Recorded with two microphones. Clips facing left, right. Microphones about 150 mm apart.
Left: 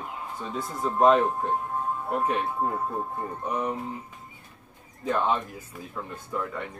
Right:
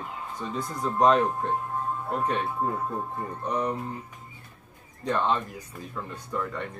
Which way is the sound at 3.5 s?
5° left (ahead or behind).